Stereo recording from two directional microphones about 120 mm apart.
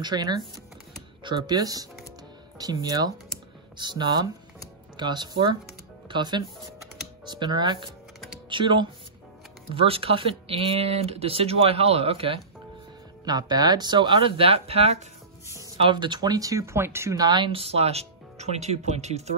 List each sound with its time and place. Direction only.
0.0 s speech: 35° right (ahead or behind); by 12.4 s 50° right (ahead or behind)
13.2 s speech: 35° right (ahead or behind); by 15.0 s 60° right (ahead or behind)
15.8 s speech: 40° right (ahead or behind); by 17.3 s 25° right (ahead or behind)
17.3 s speech: 40° right (ahead or behind)
17.6 s speech: 60° right (ahead or behind)